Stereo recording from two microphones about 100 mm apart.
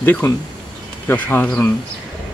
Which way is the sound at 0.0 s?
20° left (ahead or behind).